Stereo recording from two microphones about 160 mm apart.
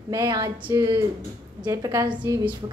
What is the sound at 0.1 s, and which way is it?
A woman's voice, 20° right (ahead or behind).